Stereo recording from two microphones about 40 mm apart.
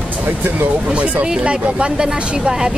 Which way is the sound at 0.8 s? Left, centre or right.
Right.